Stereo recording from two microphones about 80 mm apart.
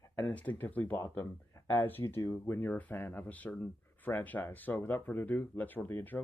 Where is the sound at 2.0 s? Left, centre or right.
Left.